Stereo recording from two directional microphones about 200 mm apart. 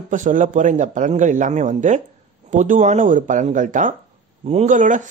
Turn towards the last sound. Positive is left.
turn(degrees=-40)  # may be behind; listen again after turning